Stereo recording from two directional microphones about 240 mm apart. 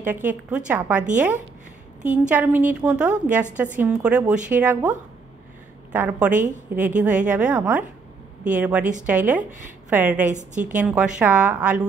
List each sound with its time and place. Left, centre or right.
0.0 s a woman's voice: centre
10.2 s a woman's voice: right
10.8 s a woman's voice: centre